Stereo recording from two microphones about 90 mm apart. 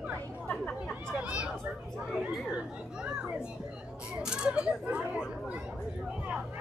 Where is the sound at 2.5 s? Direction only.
10° right (ahead or behind).